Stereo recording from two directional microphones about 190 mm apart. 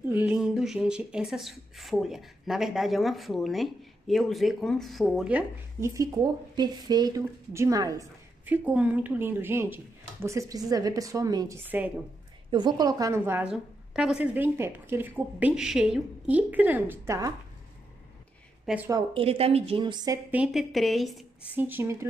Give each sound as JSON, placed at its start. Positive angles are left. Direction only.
{"t": 0.0, "sound": "a woman's voice", "side_deg": -10}
{"t": 6.5, "sound": "a woman's voice", "side_deg": -20}
{"t": 12.4, "sound": "a woman's voice", "side_deg": -25}
{"t": 18.9, "sound": "speech", "side_deg": -25}
{"t": 20.2, "sound": "a woman's voice", "side_deg": -5}